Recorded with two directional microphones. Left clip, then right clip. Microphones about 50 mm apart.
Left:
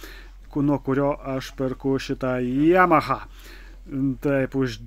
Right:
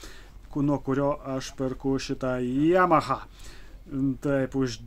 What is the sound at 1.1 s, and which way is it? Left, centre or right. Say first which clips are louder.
Speech: left 3 dB; left.